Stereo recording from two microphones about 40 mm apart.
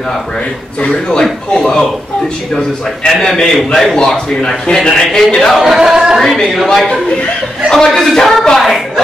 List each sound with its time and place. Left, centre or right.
0.7 s a man's voice: left
3.1 s speech: centre
3.7 s a man's voice: centre
5.6 s singing: centre
6.1 s speech: centre
7.7 s a man's voice: centre